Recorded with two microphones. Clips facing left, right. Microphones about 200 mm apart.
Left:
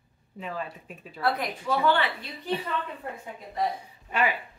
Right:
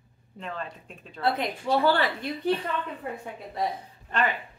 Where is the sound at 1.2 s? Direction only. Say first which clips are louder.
Right 1 dB; 25° right (ahead or behind).